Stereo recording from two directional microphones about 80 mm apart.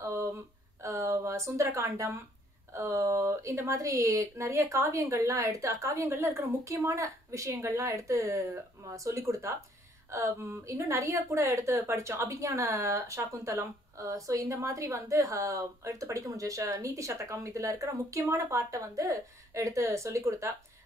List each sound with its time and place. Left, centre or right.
0.8 s a woman's voice: right